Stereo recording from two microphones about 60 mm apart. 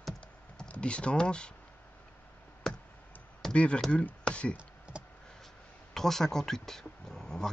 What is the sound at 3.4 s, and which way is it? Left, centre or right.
Computer keyboard, centre.